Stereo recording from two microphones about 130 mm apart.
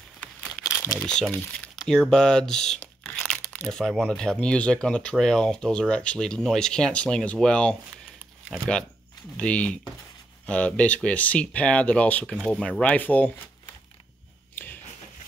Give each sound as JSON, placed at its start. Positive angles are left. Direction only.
{"t": 1.0, "sound": "speech", "side_deg": 5}
{"t": 9.4, "sound": "speech", "side_deg": 10}
{"t": 14.5, "sound": "a sound", "side_deg": 15}